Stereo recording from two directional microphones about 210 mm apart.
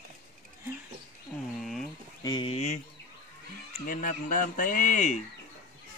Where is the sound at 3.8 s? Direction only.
40° left (ahead or behind).